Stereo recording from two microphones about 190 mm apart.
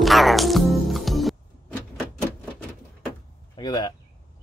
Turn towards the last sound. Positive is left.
turn(degrees=20)  # may be behind; listen again after turning